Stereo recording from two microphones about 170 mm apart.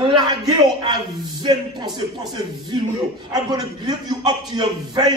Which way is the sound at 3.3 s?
25° right (ahead or behind).